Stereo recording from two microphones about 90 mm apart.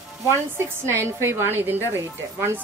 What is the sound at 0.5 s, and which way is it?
A woman's voice, 30° right (ahead or behind).